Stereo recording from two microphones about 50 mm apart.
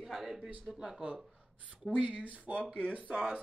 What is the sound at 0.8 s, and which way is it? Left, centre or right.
Speech, right.